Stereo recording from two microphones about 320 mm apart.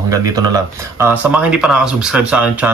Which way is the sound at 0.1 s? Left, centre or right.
Centre.